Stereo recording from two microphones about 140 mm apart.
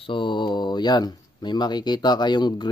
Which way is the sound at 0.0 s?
35° left (ahead or behind).